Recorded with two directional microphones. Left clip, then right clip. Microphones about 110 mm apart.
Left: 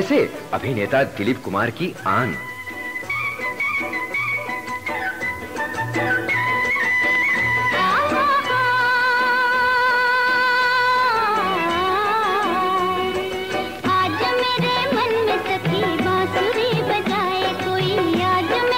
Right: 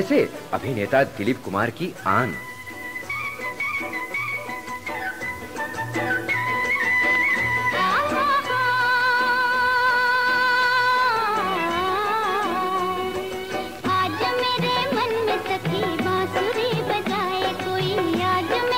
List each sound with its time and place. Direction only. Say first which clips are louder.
0.0 s a man's voice: left 2 dB; 40° left (ahead or behind)
2.0 s speech: left 1 dB; 25° left (ahead or behind)
3.6 s music: left 4 dB; 35° left (ahead or behind)
5.6 s music: left 3 dB; 30° left (ahead or behind)
11.4 s music: left 3 dB; 20° left (ahead or behind)
11.8 s music: left 3 dB; 40° left (ahead or behind)